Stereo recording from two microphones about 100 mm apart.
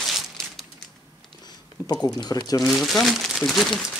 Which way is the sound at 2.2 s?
40° left (ahead or behind).